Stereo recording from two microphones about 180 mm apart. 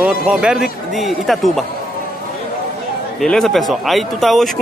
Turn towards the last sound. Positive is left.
turn(degrees=0)  # may be behind; listen again after turning